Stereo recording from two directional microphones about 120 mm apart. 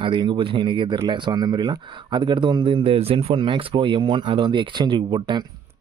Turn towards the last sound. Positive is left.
turn(degrees=-40)  # may be behind; listen again after turning